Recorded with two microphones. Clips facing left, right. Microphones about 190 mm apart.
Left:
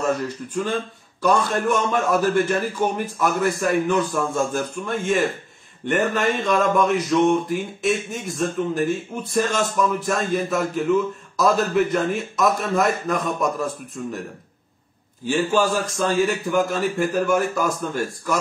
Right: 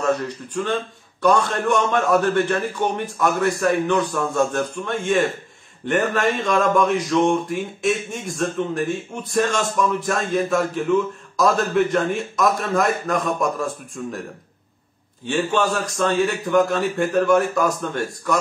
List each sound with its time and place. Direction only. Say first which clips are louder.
1.2 s speech: right 1 dB; 5° left (ahead or behind)
15.2 s speech: left 1 dB; 5° left (ahead or behind)